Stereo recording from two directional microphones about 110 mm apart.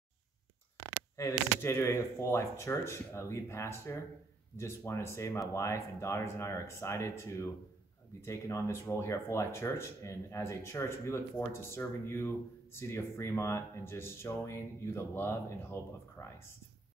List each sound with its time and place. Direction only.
1.1 s speech: 25° left (ahead or behind)